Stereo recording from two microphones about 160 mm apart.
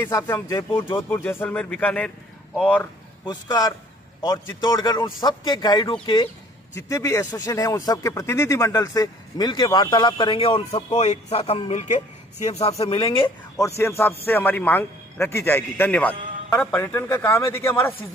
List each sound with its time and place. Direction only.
0.0 s speech: 25° left (ahead or behind)
1.1 s a man's voice: 10° left (ahead or behind)
3.3 s speech: 25° left (ahead or behind)
6.7 s speech: 20° left (ahead or behind); by 13.3 s 35° left (ahead or behind)
13.6 s a man's voice: 15° left (ahead or behind)